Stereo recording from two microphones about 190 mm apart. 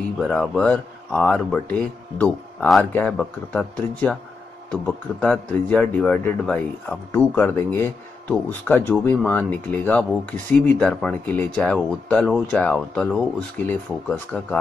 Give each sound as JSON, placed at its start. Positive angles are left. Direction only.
{"t": 0.2, "sound": "speech", "side_deg": 5}